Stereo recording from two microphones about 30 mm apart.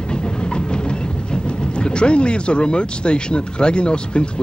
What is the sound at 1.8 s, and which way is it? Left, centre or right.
Speech, left.